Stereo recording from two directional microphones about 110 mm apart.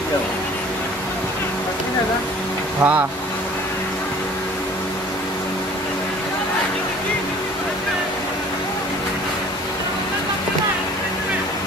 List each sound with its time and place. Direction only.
2.8 s speech: 15° right (ahead or behind)